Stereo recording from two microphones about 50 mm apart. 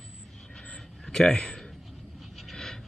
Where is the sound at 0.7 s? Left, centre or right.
Centre.